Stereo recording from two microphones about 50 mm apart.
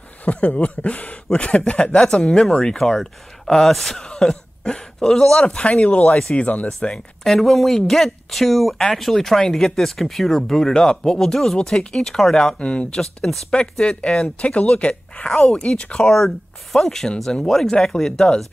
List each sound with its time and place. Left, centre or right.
0.2 s speech: left
7.2 s speech: centre
13.0 s speech: centre
13.5 s speech: left